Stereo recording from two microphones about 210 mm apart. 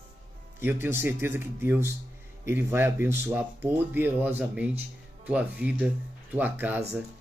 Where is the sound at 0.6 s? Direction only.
10° right (ahead or behind).